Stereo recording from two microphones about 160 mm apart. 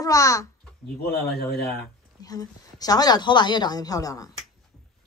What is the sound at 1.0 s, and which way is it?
Speech, 80° left.